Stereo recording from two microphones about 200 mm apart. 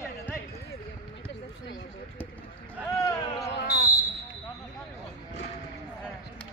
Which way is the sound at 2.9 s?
15° left (ahead or behind).